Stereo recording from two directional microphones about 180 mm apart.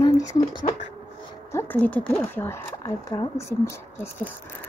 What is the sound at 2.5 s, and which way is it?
Speech, 20° left (ahead or behind).